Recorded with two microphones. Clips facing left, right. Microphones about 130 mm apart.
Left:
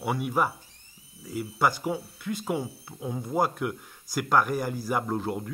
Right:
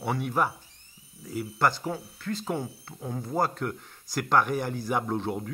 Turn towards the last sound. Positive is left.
turn(degrees=0)  # may be behind; listen again after turning